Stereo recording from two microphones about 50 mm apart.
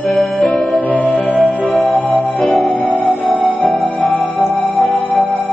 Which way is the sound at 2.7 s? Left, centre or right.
Left.